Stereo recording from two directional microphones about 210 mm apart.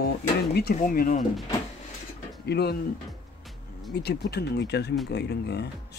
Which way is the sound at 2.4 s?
50° left (ahead or behind).